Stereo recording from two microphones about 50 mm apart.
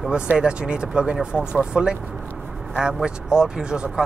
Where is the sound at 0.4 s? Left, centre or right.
Right.